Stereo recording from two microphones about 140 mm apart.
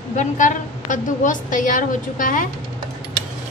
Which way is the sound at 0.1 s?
65° left (ahead or behind).